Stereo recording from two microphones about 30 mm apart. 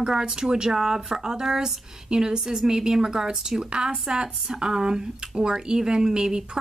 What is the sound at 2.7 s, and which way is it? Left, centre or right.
Speech, right.